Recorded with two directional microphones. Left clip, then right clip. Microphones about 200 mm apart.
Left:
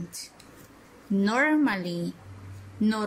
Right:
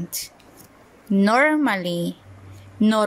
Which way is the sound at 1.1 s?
35° right (ahead or behind).